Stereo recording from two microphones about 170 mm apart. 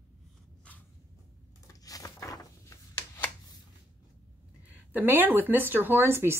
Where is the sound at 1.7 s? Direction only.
20° left (ahead or behind).